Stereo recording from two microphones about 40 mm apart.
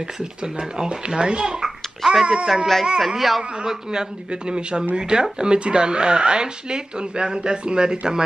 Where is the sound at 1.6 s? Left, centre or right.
Centre.